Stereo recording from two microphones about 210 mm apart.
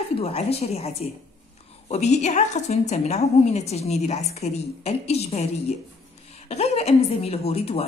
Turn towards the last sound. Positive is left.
turn(degrees=30)  # may be behind; listen again after turning